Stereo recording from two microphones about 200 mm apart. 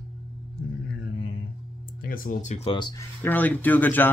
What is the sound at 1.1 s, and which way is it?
Music, 90° left.